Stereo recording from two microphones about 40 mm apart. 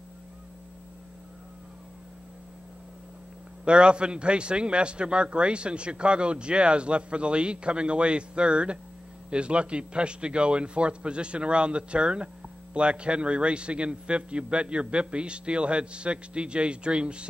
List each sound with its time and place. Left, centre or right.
3.6 s a man's voice: right